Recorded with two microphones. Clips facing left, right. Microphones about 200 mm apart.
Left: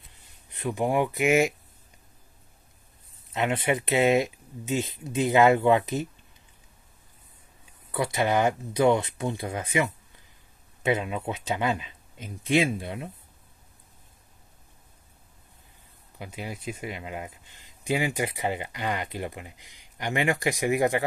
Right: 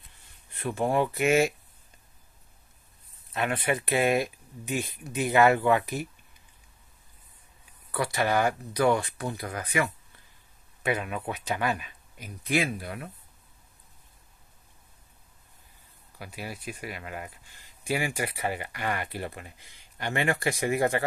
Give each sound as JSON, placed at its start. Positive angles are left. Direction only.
{"t": 0.5, "sound": "speech", "side_deg": 15}
{"t": 3.3, "sound": "speech", "side_deg": 20}
{"t": 7.9, "sound": "speech", "side_deg": 20}
{"t": 16.2, "sound": "speech", "side_deg": 20}